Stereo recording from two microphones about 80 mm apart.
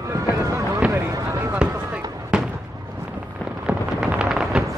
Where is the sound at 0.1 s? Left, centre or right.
Right.